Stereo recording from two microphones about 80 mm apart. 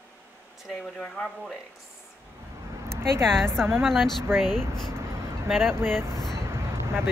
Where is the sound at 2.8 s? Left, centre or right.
Right.